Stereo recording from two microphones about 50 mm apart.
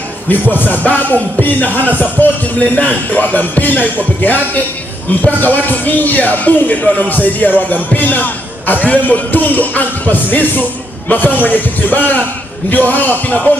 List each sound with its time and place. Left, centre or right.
0.3 s music: left
5.4 s music: left